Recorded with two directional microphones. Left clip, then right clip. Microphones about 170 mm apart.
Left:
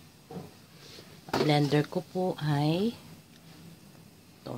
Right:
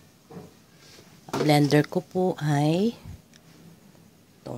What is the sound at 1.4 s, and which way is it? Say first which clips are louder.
Speech: right 6 dB; 40° right (ahead or behind).